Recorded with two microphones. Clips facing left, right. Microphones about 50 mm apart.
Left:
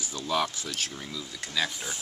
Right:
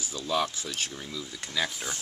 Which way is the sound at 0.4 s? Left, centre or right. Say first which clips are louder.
Even; centre.